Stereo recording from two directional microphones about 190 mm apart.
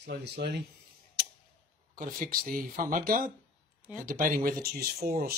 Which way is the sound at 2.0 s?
45° right (ahead or behind).